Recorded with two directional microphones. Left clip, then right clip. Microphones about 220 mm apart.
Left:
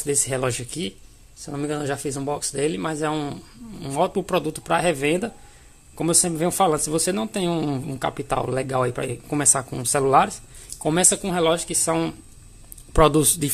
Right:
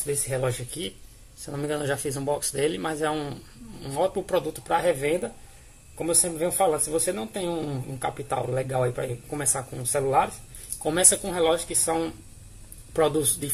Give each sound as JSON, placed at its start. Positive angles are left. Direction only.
{"t": 0.0, "sound": "speech", "side_deg": 45}
{"t": 1.4, "sound": "speech", "side_deg": 20}
{"t": 10.8, "sound": "speech", "side_deg": 30}